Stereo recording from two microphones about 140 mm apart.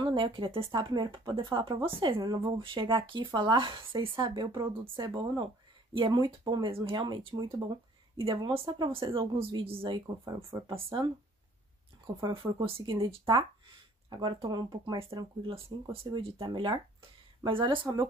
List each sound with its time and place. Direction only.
0.0 s speech: 35° right (ahead or behind)
12.2 s speech: 30° right (ahead or behind)